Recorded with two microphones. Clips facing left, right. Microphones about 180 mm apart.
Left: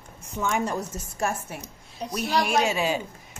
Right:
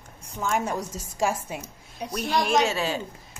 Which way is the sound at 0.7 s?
90° right.